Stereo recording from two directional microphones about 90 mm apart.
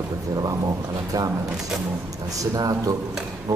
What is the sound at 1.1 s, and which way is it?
A man's voice, 40° right (ahead or behind).